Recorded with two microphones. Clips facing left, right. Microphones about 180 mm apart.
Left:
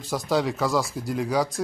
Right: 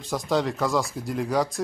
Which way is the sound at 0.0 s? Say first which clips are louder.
Even; 5° left (ahead or behind).